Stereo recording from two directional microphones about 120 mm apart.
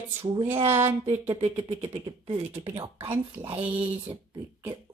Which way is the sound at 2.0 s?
45° right (ahead or behind).